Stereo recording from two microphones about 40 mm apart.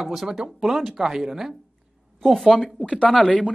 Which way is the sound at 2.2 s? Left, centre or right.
Centre.